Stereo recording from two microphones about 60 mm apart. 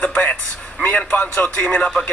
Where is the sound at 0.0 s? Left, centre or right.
Centre.